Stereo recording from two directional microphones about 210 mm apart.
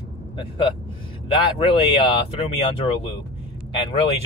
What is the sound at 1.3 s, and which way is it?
Speech, 25° left (ahead or behind).